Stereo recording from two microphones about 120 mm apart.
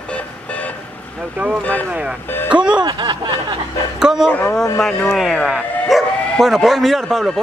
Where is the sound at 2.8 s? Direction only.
35° right (ahead or behind).